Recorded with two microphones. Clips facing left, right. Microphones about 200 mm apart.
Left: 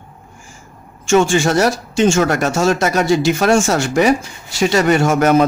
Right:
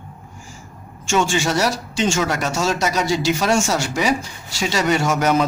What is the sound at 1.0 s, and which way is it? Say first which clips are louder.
Speech: left 6 dB; 50° left (ahead or behind).